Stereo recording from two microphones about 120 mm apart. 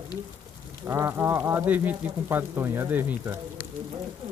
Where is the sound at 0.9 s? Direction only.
20° right (ahead or behind).